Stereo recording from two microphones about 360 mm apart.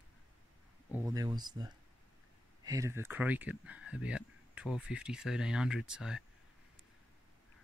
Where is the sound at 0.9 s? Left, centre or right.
Centre.